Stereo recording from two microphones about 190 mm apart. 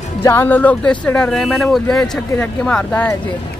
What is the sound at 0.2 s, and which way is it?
Speech, 10° left (ahead or behind).